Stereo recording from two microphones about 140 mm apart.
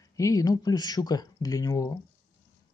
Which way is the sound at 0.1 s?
25° left (ahead or behind).